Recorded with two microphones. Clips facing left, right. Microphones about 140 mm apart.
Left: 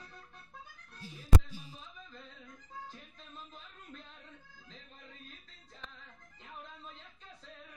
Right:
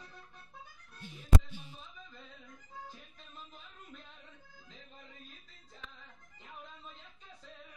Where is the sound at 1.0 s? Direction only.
35° left (ahead or behind).